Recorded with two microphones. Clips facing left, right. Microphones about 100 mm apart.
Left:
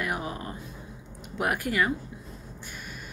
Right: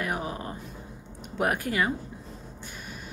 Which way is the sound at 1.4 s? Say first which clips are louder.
Even; 35° right (ahead or behind).